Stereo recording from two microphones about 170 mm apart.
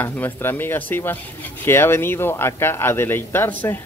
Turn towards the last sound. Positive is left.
turn(degrees=10)  # may be behind; listen again after turning